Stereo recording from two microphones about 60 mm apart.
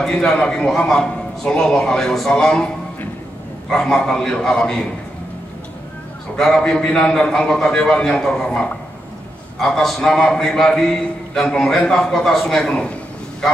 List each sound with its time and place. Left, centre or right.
0.1 s a man's voice: centre
3.7 s a man's voice: centre
6.3 s a man's voice: centre